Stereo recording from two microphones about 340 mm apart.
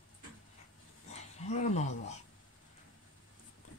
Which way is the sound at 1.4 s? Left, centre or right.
Centre.